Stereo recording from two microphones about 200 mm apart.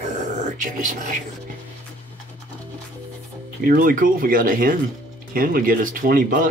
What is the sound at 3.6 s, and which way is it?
Speech, 45° right (ahead or behind).